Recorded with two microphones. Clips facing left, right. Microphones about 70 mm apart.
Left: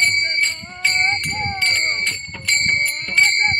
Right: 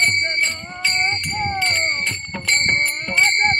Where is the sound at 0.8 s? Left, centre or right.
Centre.